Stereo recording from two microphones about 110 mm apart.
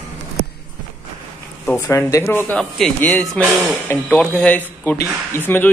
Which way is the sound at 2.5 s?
10° left (ahead or behind).